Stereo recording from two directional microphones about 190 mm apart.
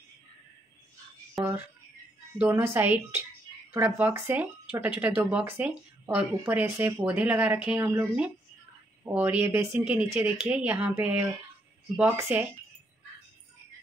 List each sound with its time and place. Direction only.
1.3 s speech: 10° right (ahead or behind)